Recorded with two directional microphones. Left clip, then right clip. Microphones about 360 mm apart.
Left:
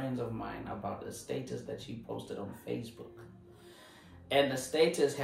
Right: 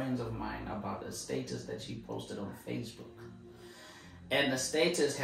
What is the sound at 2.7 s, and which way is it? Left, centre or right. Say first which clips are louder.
Speech: left 3 dB; centre.